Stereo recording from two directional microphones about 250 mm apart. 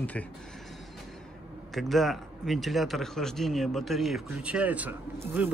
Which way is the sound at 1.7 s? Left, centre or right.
Centre.